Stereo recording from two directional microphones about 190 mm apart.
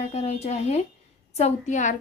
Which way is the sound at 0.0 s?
35° left (ahead or behind).